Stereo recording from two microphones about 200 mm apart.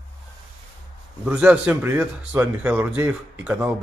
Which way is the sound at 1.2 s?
5° right (ahead or behind).